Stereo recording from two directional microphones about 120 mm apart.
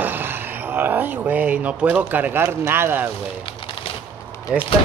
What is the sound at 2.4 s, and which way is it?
Speech, 20° right (ahead or behind).